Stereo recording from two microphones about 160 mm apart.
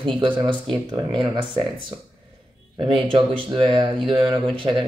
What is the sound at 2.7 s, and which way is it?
Speech, 30° right (ahead or behind).